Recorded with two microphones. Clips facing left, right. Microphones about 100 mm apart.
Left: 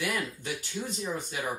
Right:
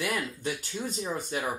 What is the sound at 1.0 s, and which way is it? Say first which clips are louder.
Speech: right 3 dB; 40° right (ahead or behind).